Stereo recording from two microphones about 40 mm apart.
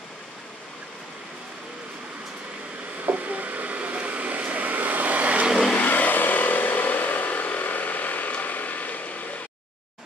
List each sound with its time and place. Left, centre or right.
3.1 s vehicle: right
5.8 s vehicle: left
8.3 s a sound: left